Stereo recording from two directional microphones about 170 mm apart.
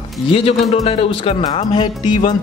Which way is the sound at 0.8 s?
35° left (ahead or behind).